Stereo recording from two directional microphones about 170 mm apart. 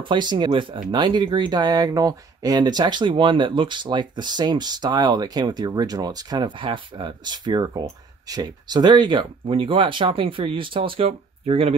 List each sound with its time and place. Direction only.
0.0 s speech: 25° right (ahead or behind)